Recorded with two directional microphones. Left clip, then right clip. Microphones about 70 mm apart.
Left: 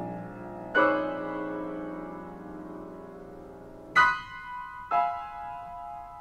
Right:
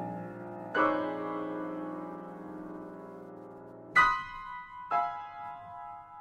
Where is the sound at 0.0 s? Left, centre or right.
Right.